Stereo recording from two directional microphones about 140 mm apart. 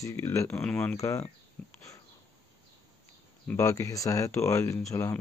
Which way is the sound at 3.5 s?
20° left (ahead or behind).